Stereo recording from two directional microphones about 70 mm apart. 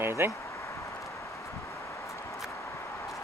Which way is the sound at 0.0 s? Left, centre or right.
Right.